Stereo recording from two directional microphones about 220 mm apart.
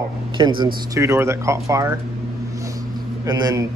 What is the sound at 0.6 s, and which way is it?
A man's voice, 15° right (ahead or behind).